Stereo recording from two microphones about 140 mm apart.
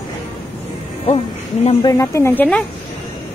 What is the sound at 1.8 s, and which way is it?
Speech, 25° left (ahead or behind).